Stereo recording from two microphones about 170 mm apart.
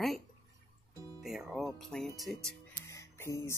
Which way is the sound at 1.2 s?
Centre (ahead or behind).